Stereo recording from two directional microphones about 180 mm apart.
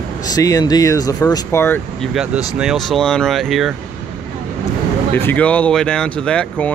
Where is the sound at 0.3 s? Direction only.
20° left (ahead or behind).